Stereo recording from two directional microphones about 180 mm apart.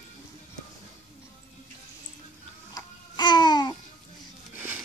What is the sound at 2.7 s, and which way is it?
Babbling, 25° left (ahead or behind).